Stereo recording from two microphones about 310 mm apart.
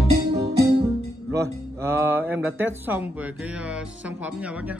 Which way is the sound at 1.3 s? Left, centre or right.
Centre.